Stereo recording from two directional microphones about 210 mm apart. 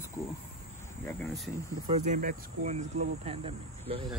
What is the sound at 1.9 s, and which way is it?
Speech, 35° right (ahead or behind).